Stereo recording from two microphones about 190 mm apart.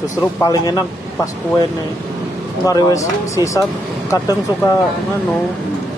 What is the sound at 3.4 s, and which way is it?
Speech, 15° right (ahead or behind).